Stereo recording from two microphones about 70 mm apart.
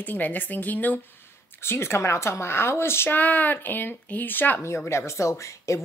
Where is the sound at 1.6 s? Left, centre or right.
Left.